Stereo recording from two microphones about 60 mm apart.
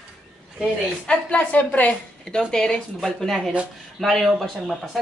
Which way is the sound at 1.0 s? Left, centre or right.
Centre.